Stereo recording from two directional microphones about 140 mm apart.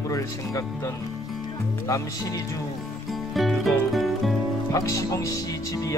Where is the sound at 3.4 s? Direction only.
Centre (ahead or behind).